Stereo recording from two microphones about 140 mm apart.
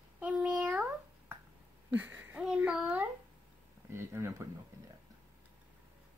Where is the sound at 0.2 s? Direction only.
5° right (ahead or behind).